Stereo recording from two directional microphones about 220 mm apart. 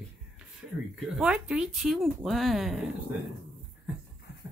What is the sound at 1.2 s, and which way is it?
Speech, 5° right (ahead or behind).